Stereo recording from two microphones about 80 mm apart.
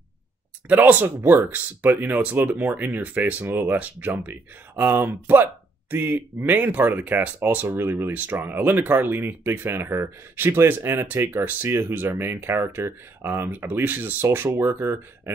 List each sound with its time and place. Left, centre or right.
0.7 s speech: centre